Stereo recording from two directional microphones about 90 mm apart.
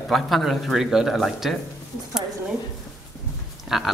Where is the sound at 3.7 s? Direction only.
5° right (ahead or behind).